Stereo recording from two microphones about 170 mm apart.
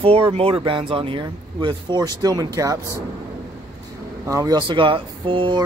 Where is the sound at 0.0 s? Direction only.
35° right (ahead or behind).